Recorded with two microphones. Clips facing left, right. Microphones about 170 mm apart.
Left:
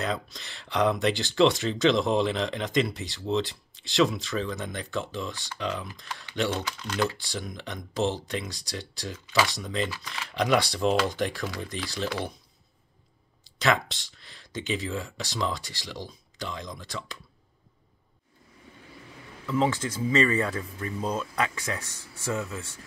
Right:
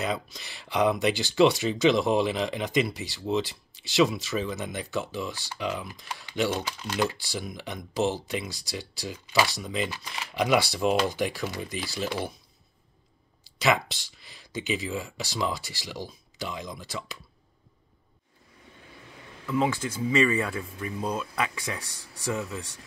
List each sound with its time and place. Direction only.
0.0 s speech: 5° right (ahead or behind)
9.8 s speech: 20° right (ahead or behind)
10.3 s speech: 5° right (ahead or behind)
13.6 s speech: 5° right (ahead or behind)
19.4 s speech: 15° right (ahead or behind)